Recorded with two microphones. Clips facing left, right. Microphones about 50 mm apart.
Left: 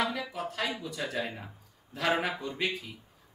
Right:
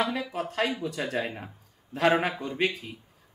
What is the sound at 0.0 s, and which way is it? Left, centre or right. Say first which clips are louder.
Speech: right 3 dB; right.